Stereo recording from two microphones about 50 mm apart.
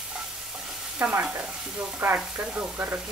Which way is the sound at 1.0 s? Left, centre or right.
Right.